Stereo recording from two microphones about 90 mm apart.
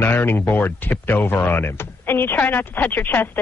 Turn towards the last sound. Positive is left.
turn(degrees=20)  # may be behind; listen again after turning